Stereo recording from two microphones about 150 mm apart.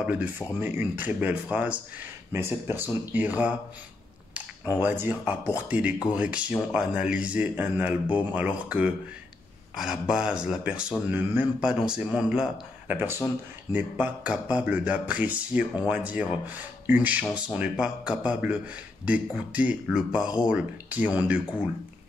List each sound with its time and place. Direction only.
0.0 s speech: 10° right (ahead or behind)
4.8 s speech: 10° right (ahead or behind)